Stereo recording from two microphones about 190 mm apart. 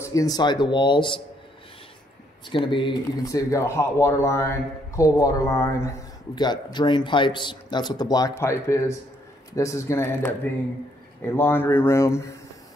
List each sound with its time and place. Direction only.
0.0 s speech: 15° left (ahead or behind)
2.5 s speech: 25° left (ahead or behind)